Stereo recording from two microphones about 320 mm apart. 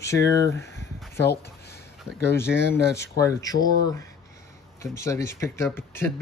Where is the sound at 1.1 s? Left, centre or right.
Left.